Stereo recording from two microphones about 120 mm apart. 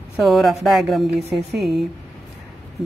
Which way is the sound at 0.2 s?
Centre (ahead or behind).